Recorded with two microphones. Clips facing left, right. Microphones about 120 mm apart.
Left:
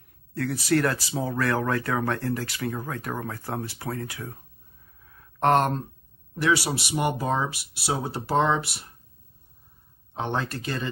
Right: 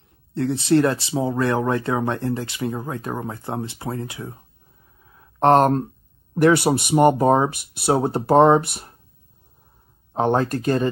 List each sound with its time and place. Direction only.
0.3 s speech: 25° right (ahead or behind)
5.0 s a sound: 25° right (ahead or behind)
6.3 s speech: 55° right (ahead or behind)
10.1 s speech: 45° right (ahead or behind)